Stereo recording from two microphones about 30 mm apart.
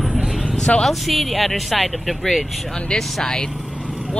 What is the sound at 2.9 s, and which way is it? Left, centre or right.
Speech, centre.